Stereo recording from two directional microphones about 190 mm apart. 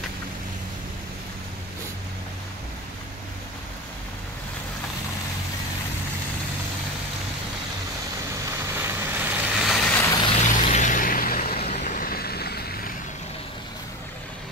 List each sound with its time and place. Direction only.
8.5 s vehicle: 15° right (ahead or behind)
9.7 s vehicle: 5° left (ahead or behind)
10.0 s vehicle: 20° left (ahead or behind)
10.5 s a sound: 40° left (ahead or behind)
11.7 s vehicle: 45° left (ahead or behind)